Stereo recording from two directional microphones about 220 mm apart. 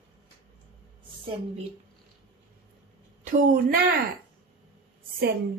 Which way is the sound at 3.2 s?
40° right (ahead or behind).